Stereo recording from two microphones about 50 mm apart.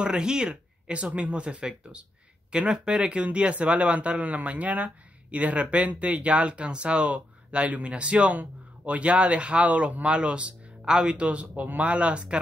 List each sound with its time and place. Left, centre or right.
0.0 s speech: centre